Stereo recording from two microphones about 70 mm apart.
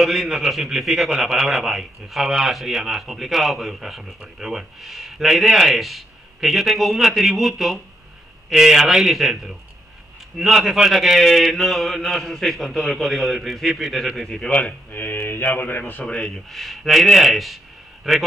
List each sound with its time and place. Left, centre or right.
0.0 s a man's voice: centre
14.9 s mantra: left
16.1 s a man's voice: centre